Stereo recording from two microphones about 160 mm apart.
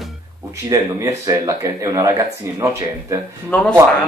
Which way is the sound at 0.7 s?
20° right (ahead or behind).